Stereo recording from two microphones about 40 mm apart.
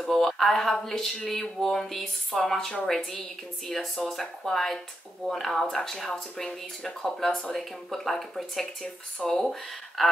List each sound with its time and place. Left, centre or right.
0.1 s speech: centre